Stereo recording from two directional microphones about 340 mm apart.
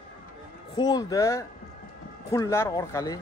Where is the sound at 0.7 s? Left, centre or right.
Centre.